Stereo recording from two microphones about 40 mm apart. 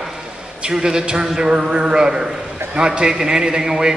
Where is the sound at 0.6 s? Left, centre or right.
Centre.